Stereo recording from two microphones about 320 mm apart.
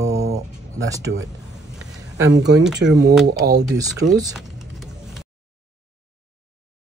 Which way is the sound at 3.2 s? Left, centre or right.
Right.